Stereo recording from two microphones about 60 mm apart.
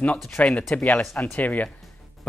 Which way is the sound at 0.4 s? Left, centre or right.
Left.